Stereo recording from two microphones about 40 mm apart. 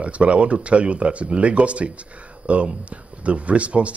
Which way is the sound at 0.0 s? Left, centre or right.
Right.